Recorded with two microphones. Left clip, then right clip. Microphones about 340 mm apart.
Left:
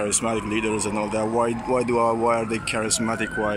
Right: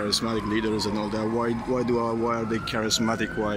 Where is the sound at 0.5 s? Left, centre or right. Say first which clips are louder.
Left 2 dB; centre.